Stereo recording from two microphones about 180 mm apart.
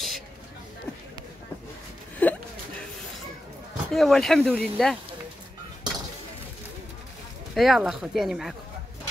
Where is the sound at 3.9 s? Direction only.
Centre (ahead or behind).